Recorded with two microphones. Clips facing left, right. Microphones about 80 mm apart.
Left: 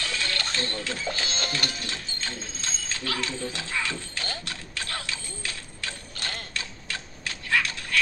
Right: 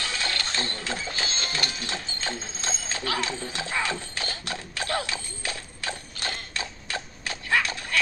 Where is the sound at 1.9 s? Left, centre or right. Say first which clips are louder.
Right 3 dB; centre.